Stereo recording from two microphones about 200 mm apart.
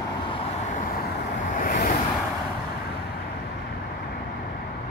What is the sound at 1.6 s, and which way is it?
Vehicle, 45° left (ahead or behind).